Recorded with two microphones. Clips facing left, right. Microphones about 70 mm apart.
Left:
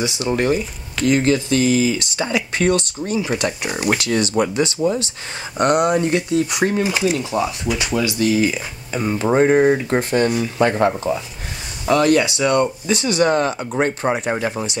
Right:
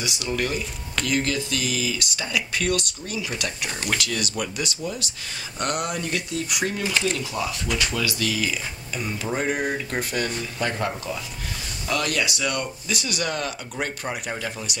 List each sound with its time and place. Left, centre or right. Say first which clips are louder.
0.0 s speech: left 7 dB; left
6.8 s speech: left 6 dB; centre; by 14.8 s left